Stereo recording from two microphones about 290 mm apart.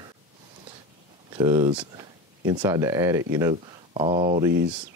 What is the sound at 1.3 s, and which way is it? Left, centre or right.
Speech, centre.